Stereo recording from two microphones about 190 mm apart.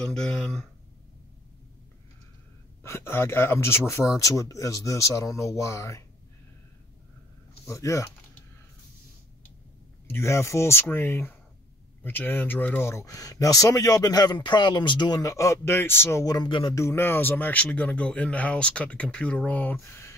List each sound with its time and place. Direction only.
0.0 s speech: 5° left (ahead or behind)
2.8 s speech: 15° left (ahead or behind)
7.6 s speech: 15° left (ahead or behind)
10.0 s speech: 15° left (ahead or behind)
16.8 s speech: 10° left (ahead or behind)